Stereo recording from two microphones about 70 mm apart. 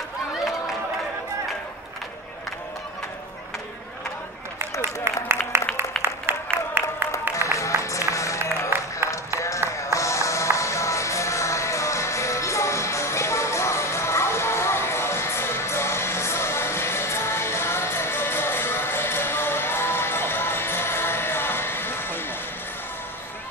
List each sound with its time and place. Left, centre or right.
5.1 s applause: right
7.3 s music: left
8.7 s music: right
9.9 s music: left